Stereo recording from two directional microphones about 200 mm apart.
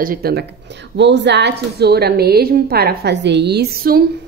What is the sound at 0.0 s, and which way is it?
A woman's voice, 45° right (ahead or behind).